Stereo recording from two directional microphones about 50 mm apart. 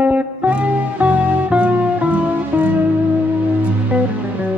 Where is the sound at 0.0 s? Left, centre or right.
Right.